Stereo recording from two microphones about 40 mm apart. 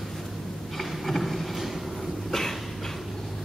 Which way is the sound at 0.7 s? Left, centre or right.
Centre.